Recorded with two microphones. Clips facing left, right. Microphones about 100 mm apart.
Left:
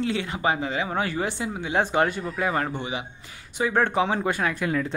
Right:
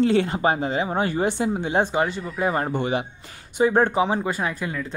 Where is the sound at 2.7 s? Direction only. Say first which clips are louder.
Right 7 dB; 50° right (ahead or behind).